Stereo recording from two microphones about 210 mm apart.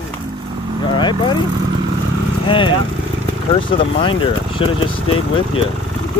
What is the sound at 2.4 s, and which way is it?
Vehicle, 25° left (ahead or behind).